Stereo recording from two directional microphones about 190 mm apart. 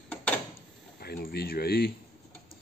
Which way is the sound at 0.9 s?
55° left (ahead or behind).